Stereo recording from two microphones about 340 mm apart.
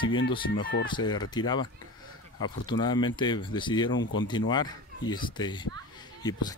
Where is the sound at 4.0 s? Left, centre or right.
Left.